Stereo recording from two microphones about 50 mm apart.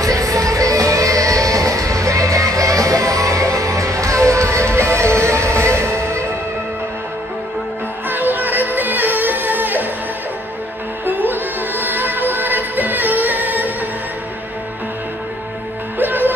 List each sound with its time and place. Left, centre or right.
0.0 s music: right
8.1 s music: right
11.1 s music: right
16.0 s music: right